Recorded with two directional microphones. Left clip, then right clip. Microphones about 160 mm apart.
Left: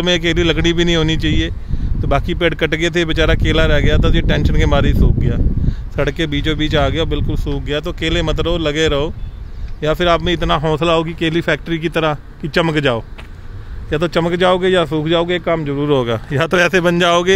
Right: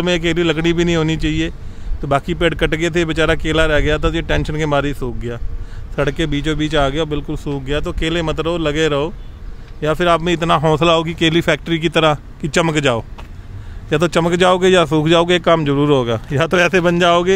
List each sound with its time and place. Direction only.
0.0 s speech: centre (ahead or behind); by 15.9 s 30° right (ahead or behind)
15.9 s speech: 5° right (ahead or behind)